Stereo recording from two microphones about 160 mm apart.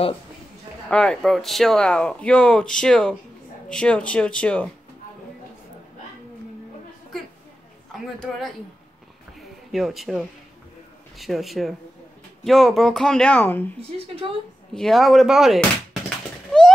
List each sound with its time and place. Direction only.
0.8 s speech: 5° left (ahead or behind)
7.9 s speech: centre (ahead or behind)
9.4 s a sound: centre (ahead or behind)
11.1 s speech: centre (ahead or behind)
13.7 s speech: 35° right (ahead or behind)
14.7 s speech: centre (ahead or behind)